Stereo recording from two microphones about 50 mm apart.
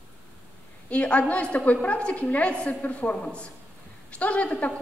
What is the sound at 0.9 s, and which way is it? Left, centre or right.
A woman's voice, left.